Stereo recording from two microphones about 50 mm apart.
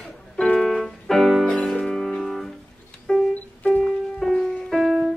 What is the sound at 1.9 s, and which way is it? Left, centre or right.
Music, centre.